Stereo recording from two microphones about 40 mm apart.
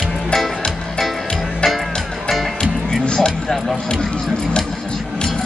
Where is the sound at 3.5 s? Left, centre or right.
Centre.